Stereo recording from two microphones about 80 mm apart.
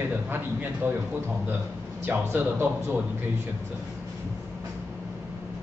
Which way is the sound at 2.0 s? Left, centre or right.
Right.